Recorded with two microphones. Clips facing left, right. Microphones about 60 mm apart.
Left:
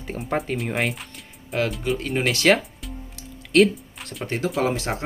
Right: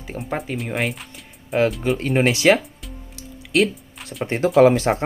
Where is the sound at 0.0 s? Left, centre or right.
Centre.